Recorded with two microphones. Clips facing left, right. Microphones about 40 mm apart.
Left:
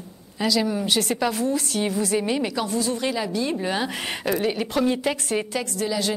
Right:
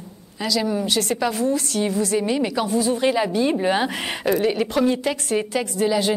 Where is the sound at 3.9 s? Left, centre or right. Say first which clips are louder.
Right 3 dB; centre.